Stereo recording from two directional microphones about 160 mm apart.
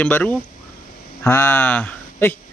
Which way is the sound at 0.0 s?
10° left (ahead or behind).